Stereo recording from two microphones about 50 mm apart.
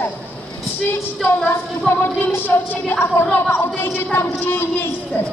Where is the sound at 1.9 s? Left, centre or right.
Left.